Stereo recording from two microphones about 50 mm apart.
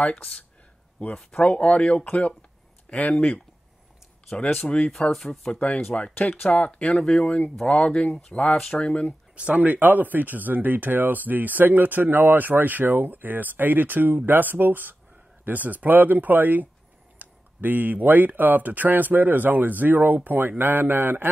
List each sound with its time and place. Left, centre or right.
0.1 s speech: centre
4.6 s speech: left
5.1 s speech: centre
5.5 s speech: left
7.0 s speech: centre
9.3 s speech: right